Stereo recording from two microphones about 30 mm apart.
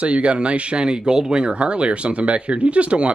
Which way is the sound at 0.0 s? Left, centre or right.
Right.